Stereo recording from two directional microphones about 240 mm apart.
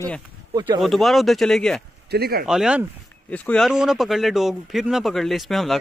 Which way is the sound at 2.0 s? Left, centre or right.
Right.